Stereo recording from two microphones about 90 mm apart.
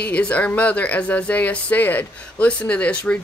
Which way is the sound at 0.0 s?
15° left (ahead or behind).